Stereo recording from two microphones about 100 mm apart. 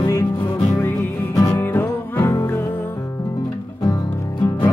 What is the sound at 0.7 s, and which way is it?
Music, 25° left (ahead or behind).